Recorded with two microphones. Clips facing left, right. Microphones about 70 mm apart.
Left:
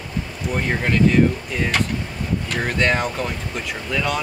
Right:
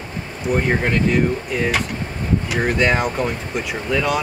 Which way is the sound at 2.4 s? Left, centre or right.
Centre.